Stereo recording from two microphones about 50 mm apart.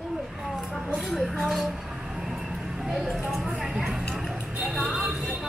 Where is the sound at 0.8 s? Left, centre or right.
Centre.